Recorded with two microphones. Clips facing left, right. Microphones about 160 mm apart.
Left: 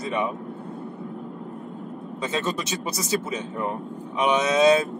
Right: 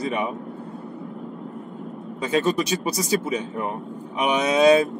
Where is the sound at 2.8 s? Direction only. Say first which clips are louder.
Right 3 dB; 10° right (ahead or behind).